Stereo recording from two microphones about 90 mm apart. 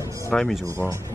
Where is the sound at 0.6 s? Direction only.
30° right (ahead or behind).